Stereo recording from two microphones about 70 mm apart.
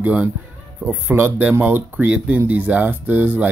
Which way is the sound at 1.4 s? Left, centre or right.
Right.